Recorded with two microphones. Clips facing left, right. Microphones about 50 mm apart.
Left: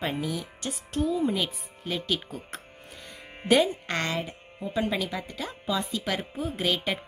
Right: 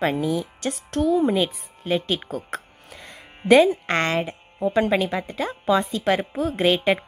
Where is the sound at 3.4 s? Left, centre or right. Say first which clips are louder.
Right 7 dB; centre.